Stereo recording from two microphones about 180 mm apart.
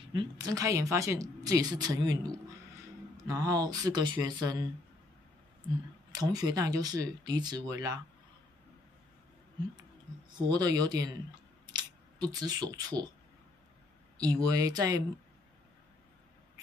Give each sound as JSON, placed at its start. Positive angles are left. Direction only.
{"t": 0.1, "sound": "a woman's voice", "side_deg": -25}
{"t": 3.3, "sound": "a woman's voice", "side_deg": -20}
{"t": 6.1, "sound": "a woman's voice", "side_deg": -20}
{"t": 10.3, "sound": "a woman's voice", "side_deg": -25}
{"t": 11.6, "sound": "a sound", "side_deg": -20}
{"t": 14.2, "sound": "a woman's voice", "side_deg": -20}